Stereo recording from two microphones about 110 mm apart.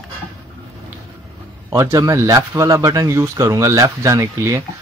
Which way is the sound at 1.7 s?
30° right (ahead or behind).